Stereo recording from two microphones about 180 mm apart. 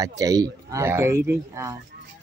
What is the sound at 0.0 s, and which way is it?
A man's voice, 20° right (ahead or behind).